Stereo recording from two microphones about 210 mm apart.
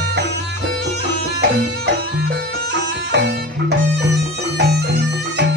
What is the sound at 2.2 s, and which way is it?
Music, 55° right (ahead or behind).